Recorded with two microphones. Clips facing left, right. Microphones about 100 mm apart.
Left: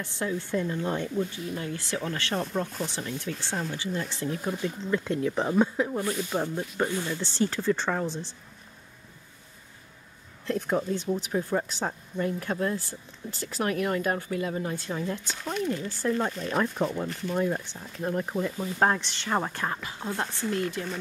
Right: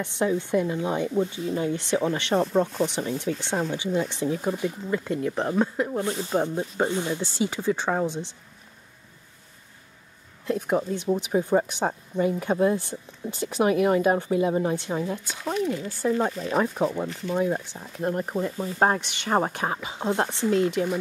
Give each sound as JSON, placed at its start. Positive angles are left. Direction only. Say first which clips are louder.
{"t": 0.0, "sound": "speech", "louder": "right 6 dB", "side_deg": -20}
{"t": 1.1, "sound": "speech", "louder": "right 5 dB", "side_deg": -25}
{"t": 5.0, "sound": "speech", "louder": "right 1 dB", "side_deg": 0}
{"t": 6.3, "sound": "speech", "louder": "right 4 dB", "side_deg": -15}
{"t": 10.4, "sound": "speech", "louder": "right 3 dB", "side_deg": -10}
{"t": 15.0, "sound": "speech", "louder": "right 3 dB", "side_deg": -10}